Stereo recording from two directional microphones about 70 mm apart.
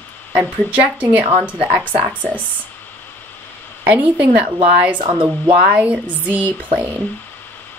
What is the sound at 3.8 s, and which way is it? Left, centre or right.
A woman's voice, right.